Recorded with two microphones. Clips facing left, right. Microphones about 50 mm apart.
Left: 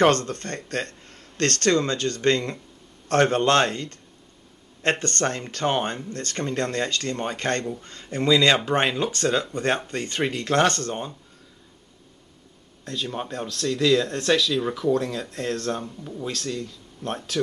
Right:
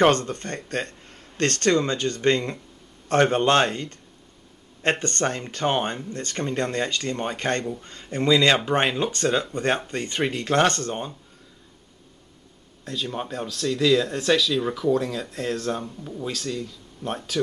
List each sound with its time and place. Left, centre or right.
0.0 s speech: centre
12.8 s speech: centre